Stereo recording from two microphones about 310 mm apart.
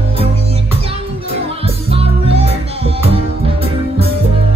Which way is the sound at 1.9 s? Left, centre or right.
Centre.